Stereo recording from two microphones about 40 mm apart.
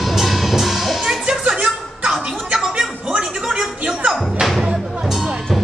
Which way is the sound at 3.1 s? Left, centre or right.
Centre.